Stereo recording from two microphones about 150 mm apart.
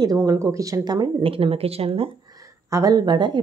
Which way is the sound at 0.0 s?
20° right (ahead or behind).